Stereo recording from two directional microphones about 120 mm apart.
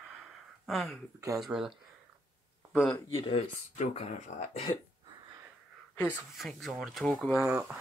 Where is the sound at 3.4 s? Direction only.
75° left (ahead or behind).